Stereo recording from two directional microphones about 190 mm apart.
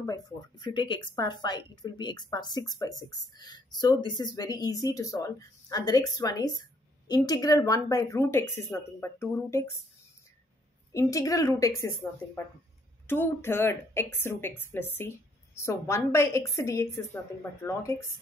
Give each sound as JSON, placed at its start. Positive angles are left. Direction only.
{"t": 0.0, "sound": "a woman's voice", "side_deg": 20}
{"t": 10.9, "sound": "a woman's voice", "side_deg": 15}